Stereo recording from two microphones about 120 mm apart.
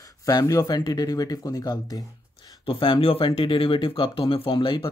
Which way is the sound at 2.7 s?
45° left (ahead or behind).